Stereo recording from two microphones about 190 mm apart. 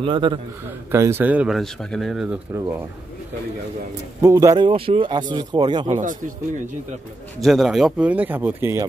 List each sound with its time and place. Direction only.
0.0 s speech: 25° right (ahead or behind)
0.9 s speech: 15° right (ahead or behind)
4.2 s speech: 15° right (ahead or behind)
5.9 s a man's voice: 40° right (ahead or behind)
7.3 s speech: centre (ahead or behind)